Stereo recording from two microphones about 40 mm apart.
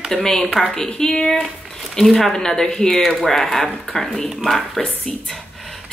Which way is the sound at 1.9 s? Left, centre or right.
Centre.